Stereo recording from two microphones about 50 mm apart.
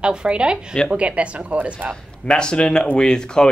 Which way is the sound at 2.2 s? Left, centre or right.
Centre.